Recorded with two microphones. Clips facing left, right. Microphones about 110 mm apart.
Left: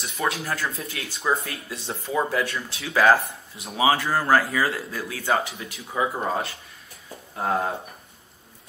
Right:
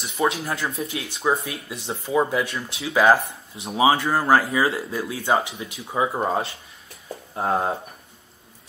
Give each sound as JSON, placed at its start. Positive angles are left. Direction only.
{"t": 0.0, "sound": "speech", "side_deg": -20}